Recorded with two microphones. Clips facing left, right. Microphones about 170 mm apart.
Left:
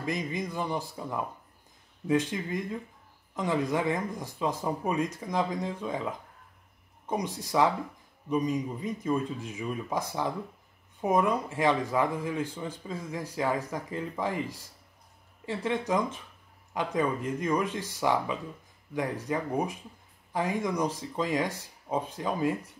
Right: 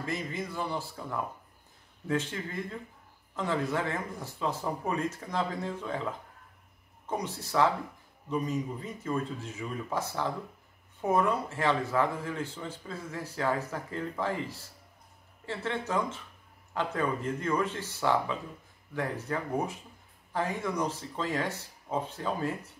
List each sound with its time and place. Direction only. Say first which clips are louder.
0.0 s speech: left 3 dB; 15° left (ahead or behind)
7.1 s speech: left 3 dB; 15° left (ahead or behind)